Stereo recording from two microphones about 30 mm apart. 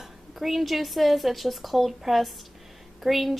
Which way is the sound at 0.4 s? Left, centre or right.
Centre.